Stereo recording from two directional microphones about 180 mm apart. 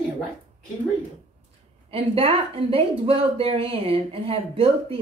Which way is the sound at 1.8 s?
30° right (ahead or behind).